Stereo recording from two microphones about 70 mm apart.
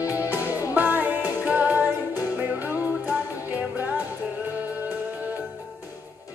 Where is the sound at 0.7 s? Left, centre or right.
Right.